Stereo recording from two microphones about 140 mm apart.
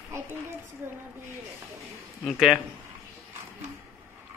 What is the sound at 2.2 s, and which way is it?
Speech, centre (ahead or behind).